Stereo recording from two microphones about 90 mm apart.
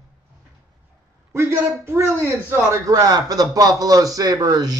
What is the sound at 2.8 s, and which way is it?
A man's voice, 40° right (ahead or behind).